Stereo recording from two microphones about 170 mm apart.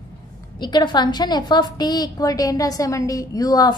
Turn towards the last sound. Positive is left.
turn(degrees=20)  # may be behind; listen again after turning